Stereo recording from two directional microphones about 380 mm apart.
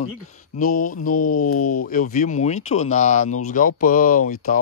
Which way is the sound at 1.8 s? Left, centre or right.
Left.